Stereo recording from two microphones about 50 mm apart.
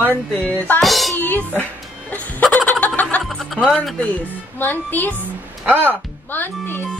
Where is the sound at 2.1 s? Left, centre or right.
Left.